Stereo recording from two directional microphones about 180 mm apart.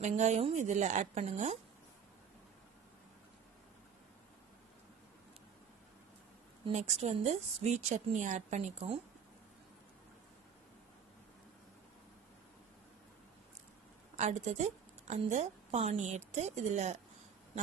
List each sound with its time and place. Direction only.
0.0 s a woman's voice: 40° right (ahead or behind)
6.6 s a woman's voice: 35° right (ahead or behind)
14.1 s a woman's voice: 40° right (ahead or behind)